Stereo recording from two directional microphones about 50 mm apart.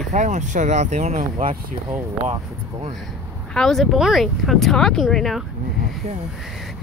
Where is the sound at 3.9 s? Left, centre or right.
Centre.